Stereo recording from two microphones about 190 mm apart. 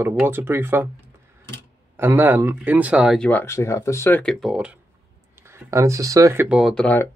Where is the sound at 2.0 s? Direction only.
10° right (ahead or behind).